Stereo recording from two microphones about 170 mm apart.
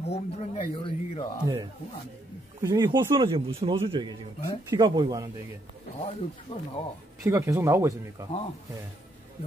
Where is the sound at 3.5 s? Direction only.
35° right (ahead or behind).